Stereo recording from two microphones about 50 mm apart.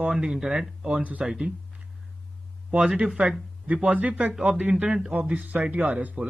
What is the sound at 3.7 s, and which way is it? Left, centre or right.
Speech, right.